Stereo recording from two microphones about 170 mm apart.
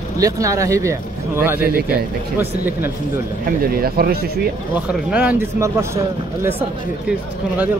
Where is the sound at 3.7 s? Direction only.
60° right (ahead or behind).